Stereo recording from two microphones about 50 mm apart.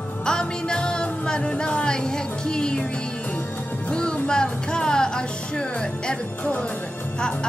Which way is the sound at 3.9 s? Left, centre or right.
Centre.